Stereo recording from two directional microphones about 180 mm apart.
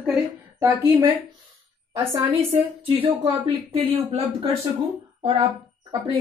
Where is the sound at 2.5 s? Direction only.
30° right (ahead or behind).